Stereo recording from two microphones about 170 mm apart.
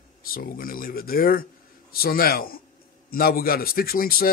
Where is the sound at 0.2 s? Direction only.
60° left (ahead or behind).